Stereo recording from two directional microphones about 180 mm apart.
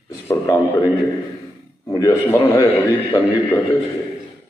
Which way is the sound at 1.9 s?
20° left (ahead or behind).